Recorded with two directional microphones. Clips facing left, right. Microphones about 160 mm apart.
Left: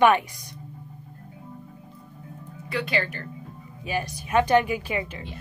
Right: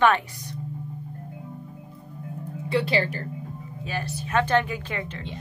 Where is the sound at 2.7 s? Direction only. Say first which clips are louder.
Right 4 dB; 30° right (ahead or behind).